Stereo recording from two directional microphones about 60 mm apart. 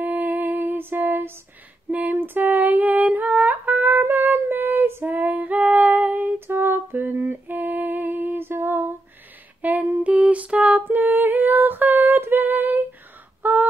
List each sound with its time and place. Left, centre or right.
0.0 s music: right
1.9 s female singing: right
6.2 s a sound: right
9.6 s female singing: right
10.9 s music: right
13.4 s crow: right